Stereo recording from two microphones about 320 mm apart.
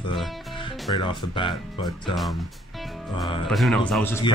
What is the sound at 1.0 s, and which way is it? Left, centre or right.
Speech, centre.